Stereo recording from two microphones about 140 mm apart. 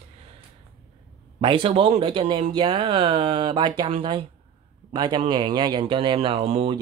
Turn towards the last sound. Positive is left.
turn(degrees=-45)  # may be behind; listen again after turning